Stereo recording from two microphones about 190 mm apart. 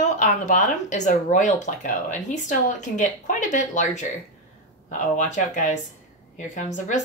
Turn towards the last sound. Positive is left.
turn(degrees=40)  # may be behind; listen again after turning